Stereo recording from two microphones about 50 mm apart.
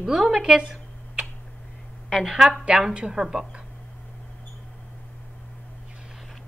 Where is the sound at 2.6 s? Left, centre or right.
Centre.